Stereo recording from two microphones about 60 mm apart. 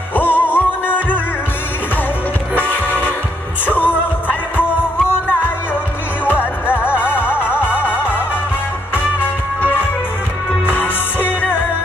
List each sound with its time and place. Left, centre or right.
0.1 s music: left
2.5 s train: left
3.6 s music: left
6.2 s music: left
10.7 s music: left